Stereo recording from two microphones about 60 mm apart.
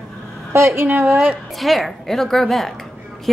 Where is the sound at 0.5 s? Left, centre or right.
Right.